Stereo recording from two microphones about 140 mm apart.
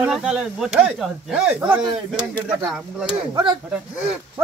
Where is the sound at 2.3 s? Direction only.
30° right (ahead or behind).